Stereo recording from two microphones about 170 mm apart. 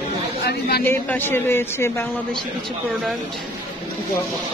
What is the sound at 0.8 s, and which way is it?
A man's voice, 10° left (ahead or behind).